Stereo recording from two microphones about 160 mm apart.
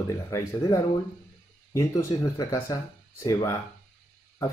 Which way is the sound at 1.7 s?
20° left (ahead or behind).